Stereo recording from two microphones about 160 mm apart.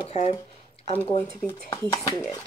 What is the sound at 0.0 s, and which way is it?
Speech, 40° left (ahead or behind).